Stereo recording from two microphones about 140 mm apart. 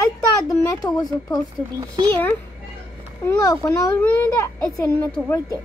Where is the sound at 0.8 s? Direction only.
25° left (ahead or behind).